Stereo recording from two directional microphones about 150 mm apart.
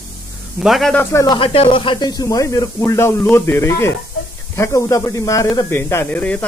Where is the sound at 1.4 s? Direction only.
35° left (ahead or behind).